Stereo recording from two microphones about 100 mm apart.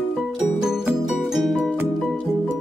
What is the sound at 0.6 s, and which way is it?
Music, 5° right (ahead or behind).